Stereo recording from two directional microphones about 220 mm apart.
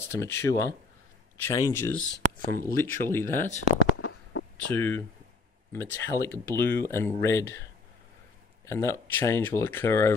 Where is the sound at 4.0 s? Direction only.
80° left.